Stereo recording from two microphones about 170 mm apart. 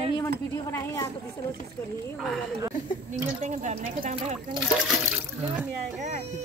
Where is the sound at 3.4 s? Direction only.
45° right (ahead or behind).